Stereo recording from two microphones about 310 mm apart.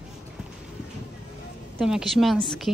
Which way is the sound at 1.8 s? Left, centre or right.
Centre.